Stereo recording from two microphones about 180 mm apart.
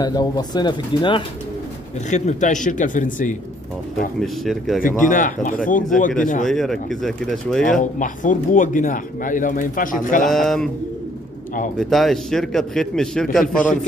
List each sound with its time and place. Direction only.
0.0 s speech: 20° left (ahead or behind)
2.0 s speech: 40° left (ahead or behind)
4.2 s a man's voice: centre (ahead or behind)
5.0 s speech: 45° left (ahead or behind)
6.4 s a man's voice: centre (ahead or behind)
7.8 s speech: 45° left (ahead or behind)
10.2 s a man's voice: centre (ahead or behind)
11.8 s a man's voice: centre (ahead or behind)